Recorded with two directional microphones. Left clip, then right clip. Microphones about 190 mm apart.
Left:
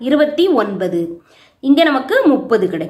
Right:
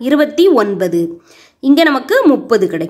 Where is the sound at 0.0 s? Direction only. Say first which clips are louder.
Right 3 dB; 35° right (ahead or behind).